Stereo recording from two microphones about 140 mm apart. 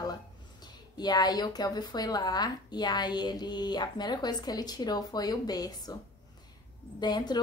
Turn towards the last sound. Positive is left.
turn(degrees=30)  # may be behind; listen again after turning